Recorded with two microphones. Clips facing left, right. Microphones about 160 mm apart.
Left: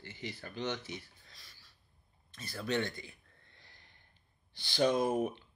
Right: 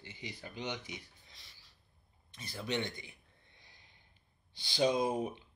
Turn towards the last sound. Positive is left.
turn(degrees=-15)  # may be behind; listen again after turning